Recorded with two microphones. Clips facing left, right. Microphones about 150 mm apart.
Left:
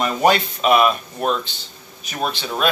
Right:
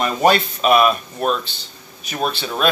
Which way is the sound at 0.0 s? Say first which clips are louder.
Right 1 dB; 10° left (ahead or behind).